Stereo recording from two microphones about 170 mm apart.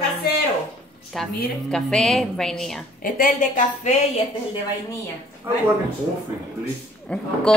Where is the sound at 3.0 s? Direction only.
55° left (ahead or behind).